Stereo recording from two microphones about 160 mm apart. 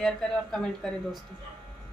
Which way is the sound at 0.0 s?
5° left (ahead or behind).